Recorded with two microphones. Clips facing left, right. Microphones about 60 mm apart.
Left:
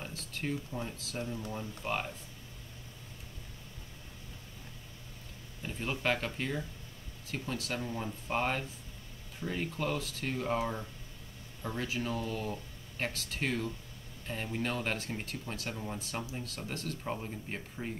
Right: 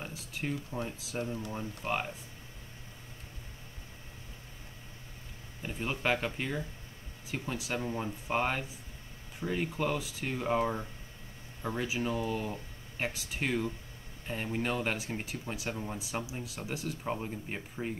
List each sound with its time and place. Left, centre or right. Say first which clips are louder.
0.0 s speech: right 1 dB; centre
5.6 s speech: right 1 dB; centre
11.6 s speech: right 3 dB; centre